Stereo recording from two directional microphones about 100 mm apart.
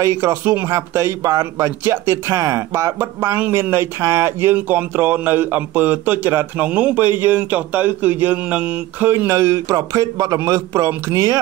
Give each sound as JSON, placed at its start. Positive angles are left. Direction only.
{"t": 0.0, "sound": "a man's voice", "side_deg": -25}
{"t": 9.3, "sound": "a man's voice", "side_deg": -30}